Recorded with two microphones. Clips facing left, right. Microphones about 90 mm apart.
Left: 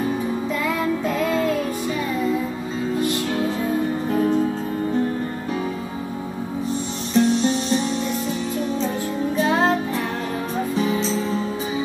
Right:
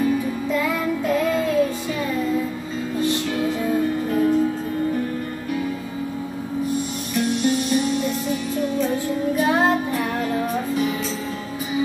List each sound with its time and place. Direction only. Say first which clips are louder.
7.2 s music: left 3 dB; 25° left (ahead or behind)